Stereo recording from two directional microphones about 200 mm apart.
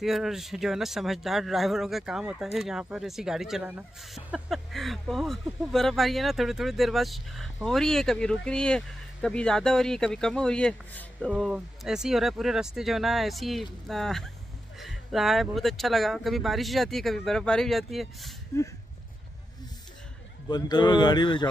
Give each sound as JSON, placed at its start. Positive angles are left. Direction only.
{"t": 0.0, "sound": "speech", "side_deg": 0}
{"t": 20.4, "sound": "speech", "side_deg": 20}